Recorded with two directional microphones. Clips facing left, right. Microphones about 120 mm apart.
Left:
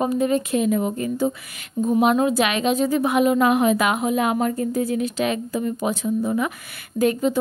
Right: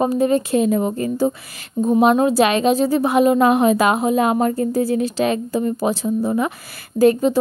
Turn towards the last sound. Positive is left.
turn(degrees=-35)  # may be behind; listen again after turning